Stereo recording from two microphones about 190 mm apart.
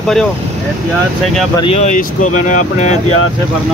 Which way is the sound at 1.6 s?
35° left (ahead or behind).